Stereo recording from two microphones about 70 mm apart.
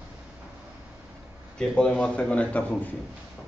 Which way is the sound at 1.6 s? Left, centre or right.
Centre.